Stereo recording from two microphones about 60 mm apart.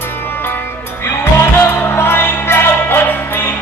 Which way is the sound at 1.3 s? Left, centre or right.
Left.